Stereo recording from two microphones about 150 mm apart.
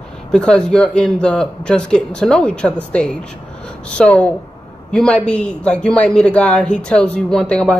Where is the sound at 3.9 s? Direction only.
10° left (ahead or behind).